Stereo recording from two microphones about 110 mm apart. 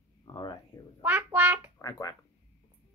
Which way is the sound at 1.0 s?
15° right (ahead or behind).